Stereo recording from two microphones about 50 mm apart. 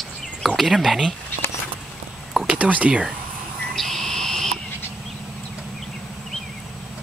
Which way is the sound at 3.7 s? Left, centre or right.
Centre.